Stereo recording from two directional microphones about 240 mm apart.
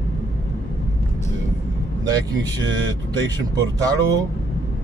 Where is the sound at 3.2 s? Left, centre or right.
Centre.